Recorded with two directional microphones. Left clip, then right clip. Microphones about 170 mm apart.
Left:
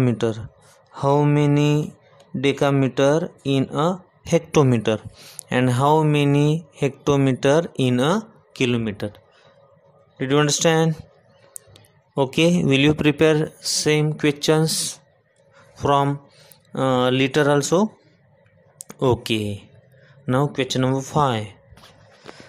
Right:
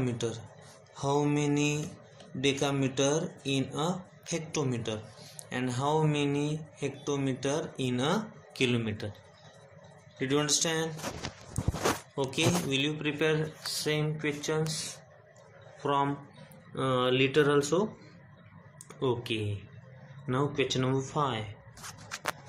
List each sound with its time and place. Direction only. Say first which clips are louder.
0.0 s speech: left 11 dB; 55° left (ahead or behind)
10.1 s speech: left 9 dB; 55° left (ahead or behind)
12.2 s speech: left 14 dB; 60° left (ahead or behind)
15.8 s speech: left 10 dB; 65° left (ahead or behind)
18.9 s speech: left 11 dB; 75° left (ahead or behind)